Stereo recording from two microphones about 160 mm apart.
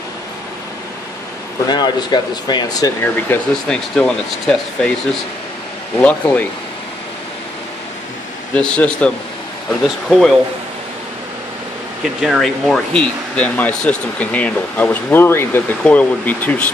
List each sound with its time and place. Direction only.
1.7 s speech: 25° left (ahead or behind)
3.0 s speech: 10° left (ahead or behind)
5.9 s speech: 10° left (ahead or behind)
8.5 s speech: 5° left (ahead or behind)
12.0 s speech: centre (ahead or behind)